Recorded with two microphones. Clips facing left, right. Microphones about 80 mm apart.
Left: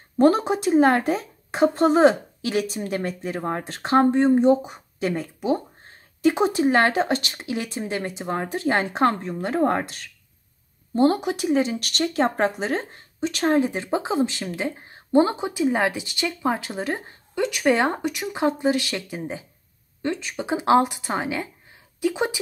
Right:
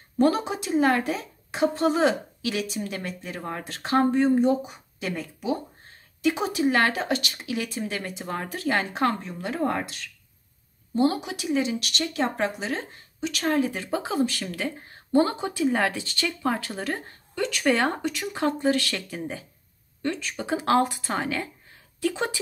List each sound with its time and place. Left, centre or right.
0.2 s a woman's voice: left; by 22.4 s centre